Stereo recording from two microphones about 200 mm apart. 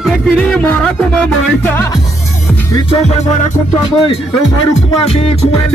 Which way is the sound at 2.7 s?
30° left (ahead or behind).